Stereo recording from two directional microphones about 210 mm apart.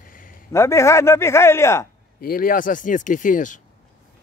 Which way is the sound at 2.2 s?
45° left (ahead or behind).